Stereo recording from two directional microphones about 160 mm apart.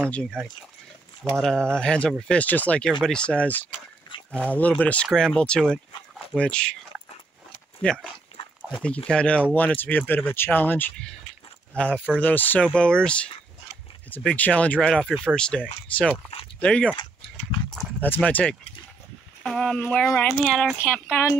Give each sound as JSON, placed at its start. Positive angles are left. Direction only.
{"t": 0.1, "sound": "speech", "side_deg": 5}
{"t": 1.2, "sound": "speech", "side_deg": -15}
{"t": 1.7, "sound": "speech", "side_deg": 5}
{"t": 7.8, "sound": "speech", "side_deg": 5}
{"t": 16.9, "sound": "a sound", "side_deg": 30}
{"t": 17.6, "sound": "speech", "side_deg": 10}